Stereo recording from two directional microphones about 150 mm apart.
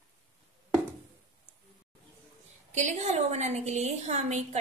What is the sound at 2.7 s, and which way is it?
A woman's voice, 50° right (ahead or behind).